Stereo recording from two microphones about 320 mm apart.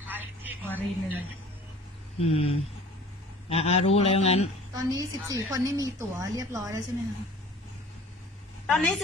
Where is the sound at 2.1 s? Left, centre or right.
Centre.